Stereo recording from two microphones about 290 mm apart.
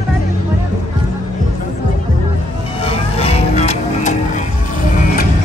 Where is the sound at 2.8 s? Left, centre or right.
Left.